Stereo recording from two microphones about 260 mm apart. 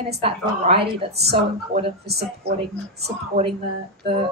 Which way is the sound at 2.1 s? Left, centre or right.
Right.